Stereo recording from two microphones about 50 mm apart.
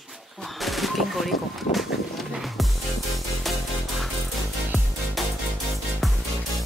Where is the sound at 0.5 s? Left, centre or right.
Centre.